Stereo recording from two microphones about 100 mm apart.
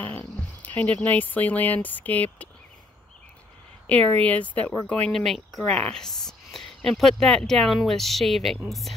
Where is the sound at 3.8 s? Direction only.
15° left (ahead or behind).